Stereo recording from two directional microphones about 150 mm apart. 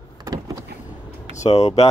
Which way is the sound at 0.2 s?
25° right (ahead or behind).